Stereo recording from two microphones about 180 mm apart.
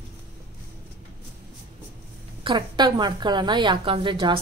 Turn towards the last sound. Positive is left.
turn(degrees=-25)  # may be behind; listen again after turning